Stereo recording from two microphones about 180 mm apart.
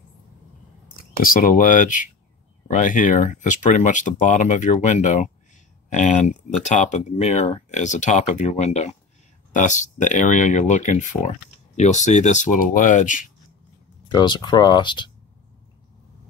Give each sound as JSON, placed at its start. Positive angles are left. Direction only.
{"t": 0.9, "sound": "speech", "side_deg": 50}
{"t": 14.0, "sound": "speech", "side_deg": 25}